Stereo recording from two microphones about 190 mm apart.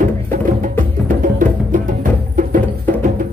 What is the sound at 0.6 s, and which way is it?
Music, 45° right (ahead or behind).